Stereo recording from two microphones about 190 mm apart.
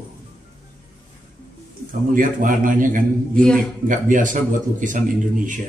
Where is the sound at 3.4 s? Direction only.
5° left (ahead or behind).